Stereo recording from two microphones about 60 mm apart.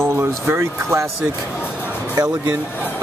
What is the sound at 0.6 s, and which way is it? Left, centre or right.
Speech, right.